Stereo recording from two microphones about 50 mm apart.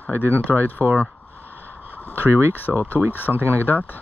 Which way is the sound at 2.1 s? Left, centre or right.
Right.